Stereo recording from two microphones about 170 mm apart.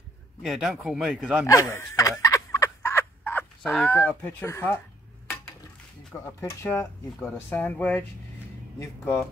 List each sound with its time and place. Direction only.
0.4 s speech: 5° right (ahead or behind)
1.4 s fowl: 20° left (ahead or behind)
4.2 s speech: 10° left (ahead or behind)
6.2 s speech: 15° left (ahead or behind)